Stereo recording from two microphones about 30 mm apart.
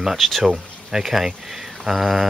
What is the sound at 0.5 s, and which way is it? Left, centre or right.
Speech, centre.